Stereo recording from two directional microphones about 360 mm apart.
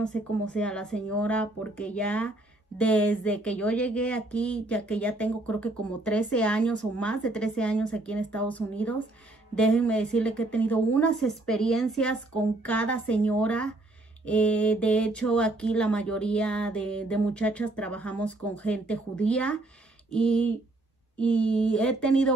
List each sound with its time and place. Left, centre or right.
0.0 s speech: centre